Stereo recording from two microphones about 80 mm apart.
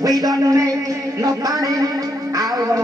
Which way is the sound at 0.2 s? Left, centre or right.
Right.